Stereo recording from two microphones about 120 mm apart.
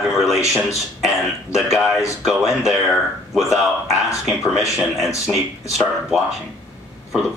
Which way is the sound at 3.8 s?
Centre (ahead or behind).